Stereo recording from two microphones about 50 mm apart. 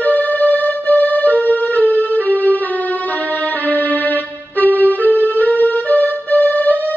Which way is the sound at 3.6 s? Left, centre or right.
Left.